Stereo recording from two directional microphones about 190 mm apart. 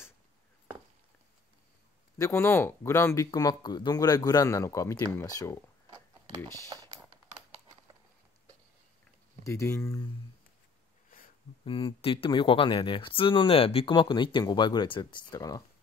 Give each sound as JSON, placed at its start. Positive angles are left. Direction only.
{"t": 2.1, "sound": "speech", "side_deg": 15}
{"t": 9.4, "sound": "speech", "side_deg": 15}
{"t": 11.6, "sound": "speech", "side_deg": 25}